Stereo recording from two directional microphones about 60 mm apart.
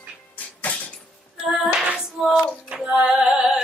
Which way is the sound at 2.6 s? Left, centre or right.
Centre.